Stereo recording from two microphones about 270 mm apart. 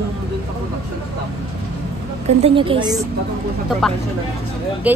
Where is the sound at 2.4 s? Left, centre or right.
Centre.